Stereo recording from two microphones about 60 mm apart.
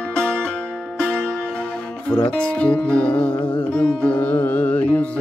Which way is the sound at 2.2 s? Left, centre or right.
Centre.